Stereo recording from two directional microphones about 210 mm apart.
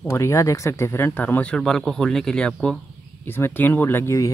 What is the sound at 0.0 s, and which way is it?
Speech, 10° left (ahead or behind).